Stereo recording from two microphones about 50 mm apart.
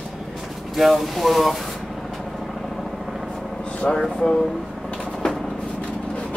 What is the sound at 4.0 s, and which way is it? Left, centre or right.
Speech, centre.